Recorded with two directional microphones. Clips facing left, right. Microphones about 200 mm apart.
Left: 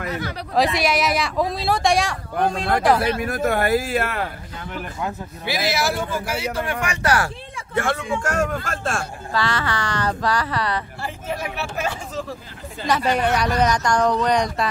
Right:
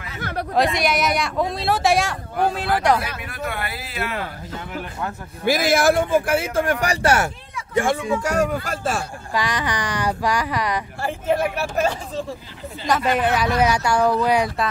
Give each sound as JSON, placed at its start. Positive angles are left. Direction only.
{"t": 0.2, "sound": "speech", "side_deg": -55}
{"t": 0.6, "sound": "speech", "side_deg": 0}
{"t": 3.2, "sound": "speech", "side_deg": 45}
{"t": 5.4, "sound": "speech", "side_deg": -50}
{"t": 7.7, "sound": "speech", "side_deg": -15}
{"t": 11.0, "sound": "speech", "side_deg": -50}
{"t": 12.8, "sound": "speech", "side_deg": 0}